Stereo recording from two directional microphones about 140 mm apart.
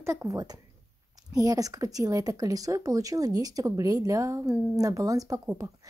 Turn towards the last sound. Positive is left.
turn(degrees=-25)  # may be behind; listen again after turning